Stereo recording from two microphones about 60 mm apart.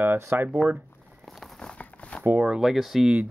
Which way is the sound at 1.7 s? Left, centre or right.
Centre.